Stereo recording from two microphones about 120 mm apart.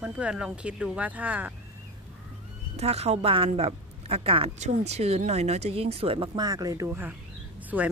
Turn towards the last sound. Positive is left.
turn(degrees=-15)  # may be behind; listen again after turning